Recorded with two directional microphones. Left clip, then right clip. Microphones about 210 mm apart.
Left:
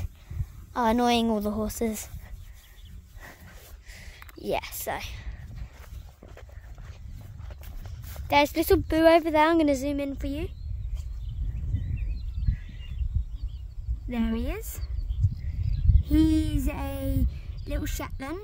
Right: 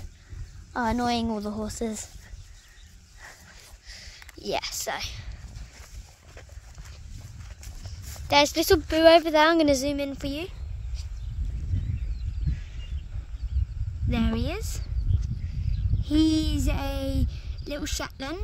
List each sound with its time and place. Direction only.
0.7 s a woman's voice: 40° left (ahead or behind)
3.8 s a sound: 10° left (ahead or behind)
4.4 s speech: 5° left (ahead or behind)
7.6 s horse: 50° right (ahead or behind)
8.3 s a woman's voice: 5° left (ahead or behind)
14.0 s a sound: 5° left (ahead or behind)
15.6 s speech: 5° left (ahead or behind)